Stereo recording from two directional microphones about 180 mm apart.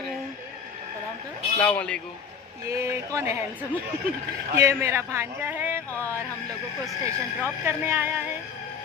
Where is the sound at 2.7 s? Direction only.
15° right (ahead or behind).